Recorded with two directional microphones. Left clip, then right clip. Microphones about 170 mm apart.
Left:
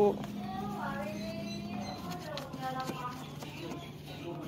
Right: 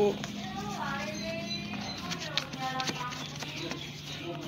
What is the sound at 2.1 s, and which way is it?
Music, 5° right (ahead or behind).